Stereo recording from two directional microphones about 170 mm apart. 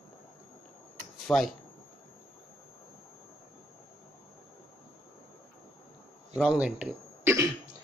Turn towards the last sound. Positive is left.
turn(degrees=-15)  # may be behind; listen again after turning